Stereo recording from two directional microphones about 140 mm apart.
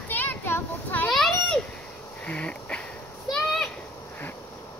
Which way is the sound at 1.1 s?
Centre (ahead or behind).